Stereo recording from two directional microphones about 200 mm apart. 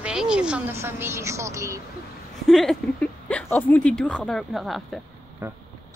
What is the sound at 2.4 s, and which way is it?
Speech, centre (ahead or behind).